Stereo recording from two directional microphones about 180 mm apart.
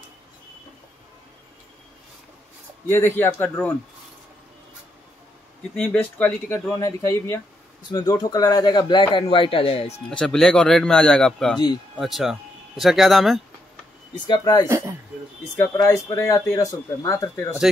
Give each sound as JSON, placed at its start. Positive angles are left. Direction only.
{"t": 2.9, "sound": "speech", "side_deg": 10}
{"t": 5.8, "sound": "speech", "side_deg": 10}
{"t": 10.0, "sound": "speech", "side_deg": 5}
{"t": 14.2, "sound": "speech", "side_deg": 25}
{"t": 14.7, "sound": "speech", "side_deg": -15}
{"t": 15.5, "sound": "speech", "side_deg": 15}